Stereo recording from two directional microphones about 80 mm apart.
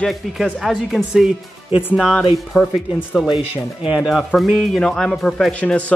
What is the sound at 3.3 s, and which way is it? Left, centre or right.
Speech, centre.